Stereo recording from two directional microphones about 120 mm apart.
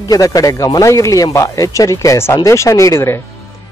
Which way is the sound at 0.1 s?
30° left (ahead or behind).